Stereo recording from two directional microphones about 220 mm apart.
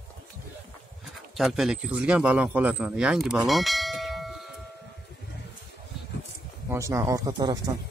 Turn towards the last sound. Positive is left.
turn(degrees=-20)  # may be behind; listen again after turning